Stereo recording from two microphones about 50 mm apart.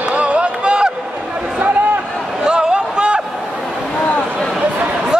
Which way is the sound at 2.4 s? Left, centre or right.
Centre.